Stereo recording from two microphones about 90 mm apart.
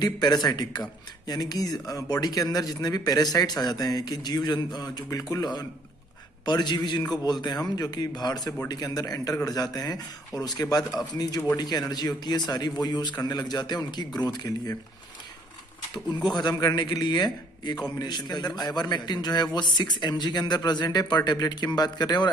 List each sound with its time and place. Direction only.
0.0 s a man's voice: 50° left (ahead or behind)
16.3 s speech: 55° left (ahead or behind)